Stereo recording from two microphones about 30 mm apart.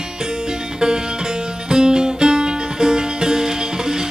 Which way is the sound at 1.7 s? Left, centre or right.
Right.